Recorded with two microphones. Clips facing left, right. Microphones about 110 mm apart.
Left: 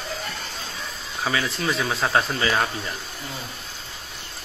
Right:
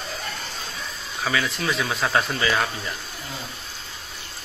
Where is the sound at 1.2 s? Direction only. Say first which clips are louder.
Even; 30° left (ahead or behind).